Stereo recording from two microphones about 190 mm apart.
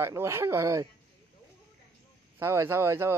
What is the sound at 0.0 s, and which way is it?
Speech, 15° right (ahead or behind).